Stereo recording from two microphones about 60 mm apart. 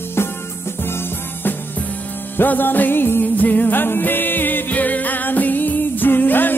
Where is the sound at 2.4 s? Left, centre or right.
Left.